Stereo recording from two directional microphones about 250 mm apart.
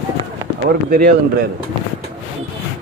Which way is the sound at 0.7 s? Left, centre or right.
Right.